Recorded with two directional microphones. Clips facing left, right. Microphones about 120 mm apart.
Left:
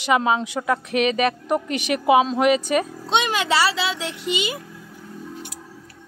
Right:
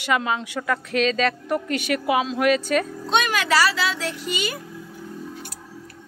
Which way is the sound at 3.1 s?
25° left (ahead or behind).